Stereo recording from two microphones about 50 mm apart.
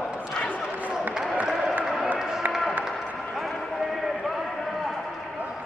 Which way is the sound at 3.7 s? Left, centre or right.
Centre.